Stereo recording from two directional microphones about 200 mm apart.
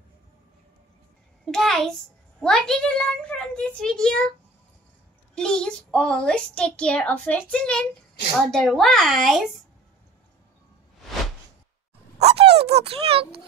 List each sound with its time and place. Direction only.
1.4 s a child's voice: centre (ahead or behind)
5.3 s a woman's voice: 5° left (ahead or behind)
12.2 s a child's voice: 30° right (ahead or behind)